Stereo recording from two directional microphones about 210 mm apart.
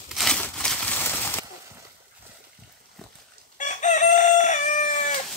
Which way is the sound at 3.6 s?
35° left (ahead or behind).